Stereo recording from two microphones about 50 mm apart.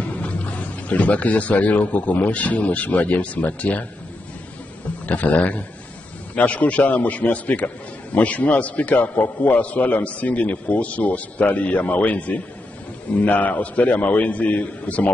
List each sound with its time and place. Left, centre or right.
0.0 s speech: left
5.0 s a man's voice: left